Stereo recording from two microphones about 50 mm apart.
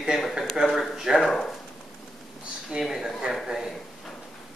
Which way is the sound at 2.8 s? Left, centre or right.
Centre.